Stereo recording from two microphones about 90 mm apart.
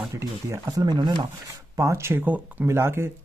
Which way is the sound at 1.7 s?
30° right (ahead or behind).